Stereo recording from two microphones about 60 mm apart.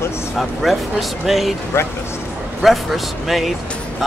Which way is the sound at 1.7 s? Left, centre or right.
Left.